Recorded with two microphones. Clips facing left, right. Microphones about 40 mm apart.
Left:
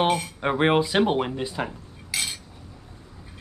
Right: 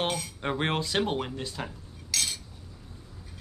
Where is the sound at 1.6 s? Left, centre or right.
Left.